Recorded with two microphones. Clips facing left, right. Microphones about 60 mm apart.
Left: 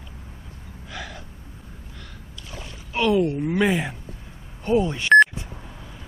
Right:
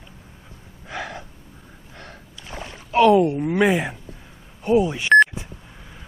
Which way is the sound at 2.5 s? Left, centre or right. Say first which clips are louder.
Right 9 dB; right.